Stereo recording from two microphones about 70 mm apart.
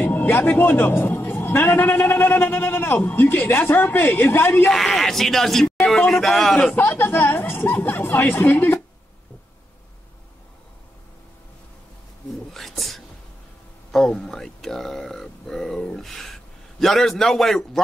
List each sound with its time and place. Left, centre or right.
0.0 s a man's voice: left
4.6 s speech: centre
6.7 s a man's voice: left
12.5 s whispering: centre
13.9 s a sound: centre
16.8 s speech: centre